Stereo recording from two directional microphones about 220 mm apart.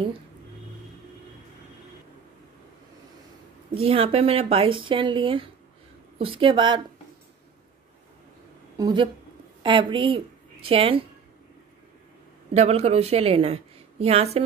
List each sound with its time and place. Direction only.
3.8 s a woman's voice: 25° right (ahead or behind)
8.7 s a woman's voice: 20° right (ahead or behind)
12.5 s a woman's voice: 30° right (ahead or behind)